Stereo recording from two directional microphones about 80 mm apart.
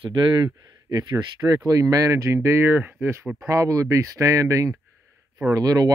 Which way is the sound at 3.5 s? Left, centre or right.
Right.